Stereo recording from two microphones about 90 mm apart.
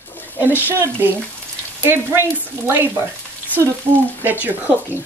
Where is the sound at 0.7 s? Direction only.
25° right (ahead or behind).